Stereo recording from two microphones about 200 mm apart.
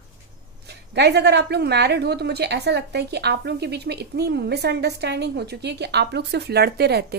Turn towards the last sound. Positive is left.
turn(degrees=-55)  # may be behind; listen again after turning